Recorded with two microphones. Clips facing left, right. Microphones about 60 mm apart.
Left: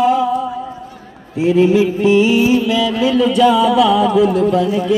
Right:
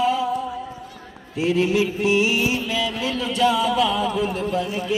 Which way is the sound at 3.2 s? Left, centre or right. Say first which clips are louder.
Left 7 dB; left.